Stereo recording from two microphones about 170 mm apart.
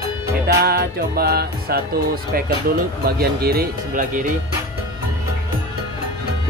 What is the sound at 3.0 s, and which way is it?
Speech, 65° right (ahead or behind).